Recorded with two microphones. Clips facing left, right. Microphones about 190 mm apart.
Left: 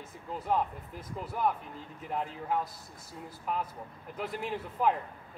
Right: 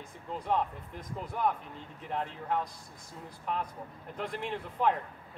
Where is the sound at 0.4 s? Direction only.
5° left (ahead or behind).